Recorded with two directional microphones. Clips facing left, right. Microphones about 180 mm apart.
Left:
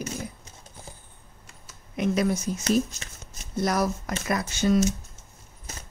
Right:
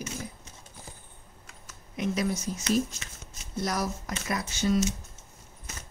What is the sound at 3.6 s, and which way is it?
Speech, 60° left (ahead or behind).